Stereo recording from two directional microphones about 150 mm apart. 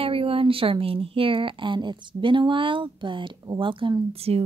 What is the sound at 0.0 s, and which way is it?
Speech, 40° right (ahead or behind).